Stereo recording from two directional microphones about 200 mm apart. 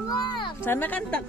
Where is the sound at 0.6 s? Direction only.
10° left (ahead or behind).